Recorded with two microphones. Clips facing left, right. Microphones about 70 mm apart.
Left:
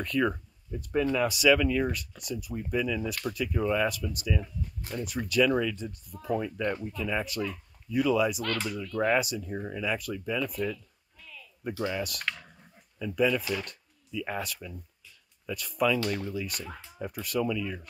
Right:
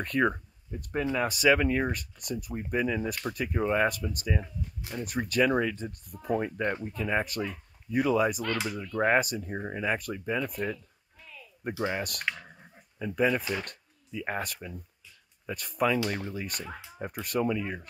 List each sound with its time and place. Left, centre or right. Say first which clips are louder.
0.0 s speech: right 1 dB; right
8.6 s speech: right 1 dB; right
11.8 s speech: right 1 dB; right